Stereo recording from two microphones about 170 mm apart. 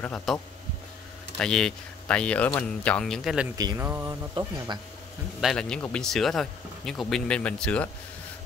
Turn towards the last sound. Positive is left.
turn(degrees=5)  # may be behind; listen again after turning